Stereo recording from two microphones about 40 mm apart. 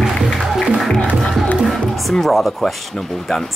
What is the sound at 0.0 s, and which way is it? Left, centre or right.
Music, centre.